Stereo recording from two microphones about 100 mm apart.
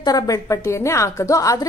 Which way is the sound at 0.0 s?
35° left (ahead or behind).